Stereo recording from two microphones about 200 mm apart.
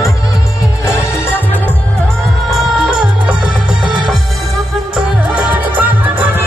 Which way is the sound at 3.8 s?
20° right (ahead or behind).